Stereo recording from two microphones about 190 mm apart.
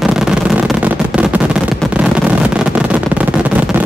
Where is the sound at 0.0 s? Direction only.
5° right (ahead or behind).